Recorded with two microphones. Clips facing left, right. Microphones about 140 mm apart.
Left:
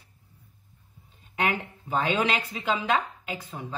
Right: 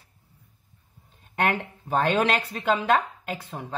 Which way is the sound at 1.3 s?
55° right (ahead or behind).